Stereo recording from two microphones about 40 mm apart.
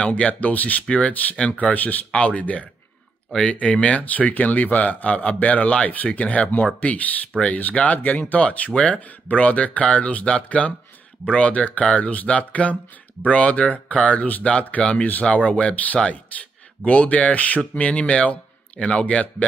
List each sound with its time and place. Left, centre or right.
0.0 s speech: left
0.3 s speech: left
2.1 s speech: left
4.0 s speech: left
9.3 s speech: left
14.8 s speech: left